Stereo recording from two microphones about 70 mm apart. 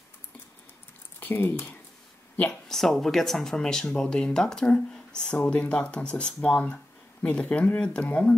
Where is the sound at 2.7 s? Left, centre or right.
Centre.